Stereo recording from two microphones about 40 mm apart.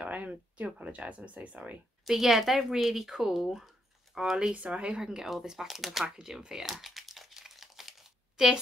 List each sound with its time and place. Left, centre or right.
0.0 s speech: right
2.0 s speech: centre
4.6 s speech: right
5.2 s speech: centre
6.0 s speech: right
6.6 s crumpling: centre
8.4 s speech: centre